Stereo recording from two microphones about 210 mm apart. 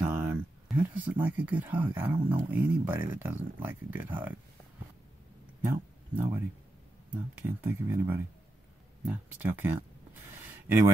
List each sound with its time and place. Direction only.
0.0 s speech: 5° right (ahead or behind)
5.6 s a sound: 10° right (ahead or behind)
7.4 s speech: 10° right (ahead or behind)